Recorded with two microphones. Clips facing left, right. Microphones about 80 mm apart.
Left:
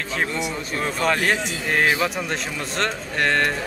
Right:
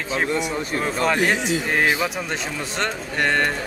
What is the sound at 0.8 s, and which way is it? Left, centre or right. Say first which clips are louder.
Speech: even; centre.